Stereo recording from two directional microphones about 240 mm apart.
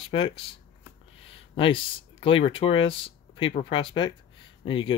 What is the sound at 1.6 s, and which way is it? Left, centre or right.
Speech, left.